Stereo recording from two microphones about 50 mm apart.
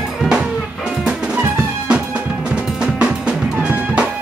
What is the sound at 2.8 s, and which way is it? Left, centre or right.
Music, right.